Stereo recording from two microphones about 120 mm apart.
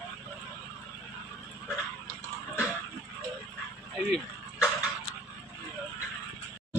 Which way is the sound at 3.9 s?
5° right (ahead or behind).